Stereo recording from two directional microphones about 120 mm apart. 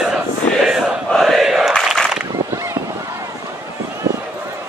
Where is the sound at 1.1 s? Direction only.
Centre (ahead or behind).